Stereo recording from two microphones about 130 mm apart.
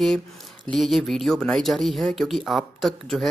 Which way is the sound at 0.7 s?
Centre (ahead or behind).